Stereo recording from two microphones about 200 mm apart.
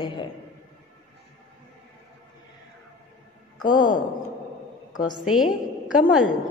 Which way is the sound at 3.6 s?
20° left (ahead or behind).